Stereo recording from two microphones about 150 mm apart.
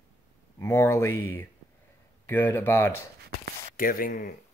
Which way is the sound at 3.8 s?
70° left (ahead or behind).